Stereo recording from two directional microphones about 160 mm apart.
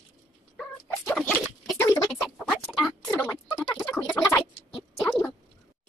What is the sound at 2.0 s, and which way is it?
Chicken, centre (ahead or behind).